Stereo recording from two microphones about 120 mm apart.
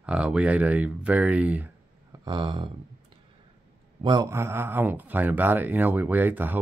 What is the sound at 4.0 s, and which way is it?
Speech, 40° right (ahead or behind).